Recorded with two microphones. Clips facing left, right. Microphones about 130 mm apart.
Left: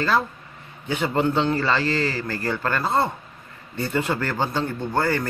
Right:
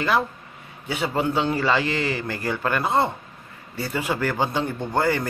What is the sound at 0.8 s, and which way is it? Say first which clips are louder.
Speech: left 2 dB; 10° right (ahead or behind).